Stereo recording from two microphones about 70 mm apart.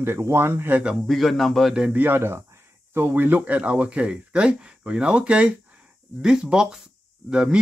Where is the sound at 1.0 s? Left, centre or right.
Centre.